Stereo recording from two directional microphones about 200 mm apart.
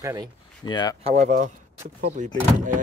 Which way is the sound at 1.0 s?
35° right (ahead or behind).